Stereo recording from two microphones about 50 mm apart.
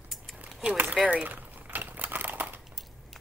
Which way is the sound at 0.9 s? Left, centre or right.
Right.